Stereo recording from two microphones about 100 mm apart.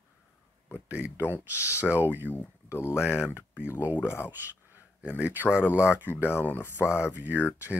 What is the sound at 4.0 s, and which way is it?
Speech, 25° left (ahead or behind).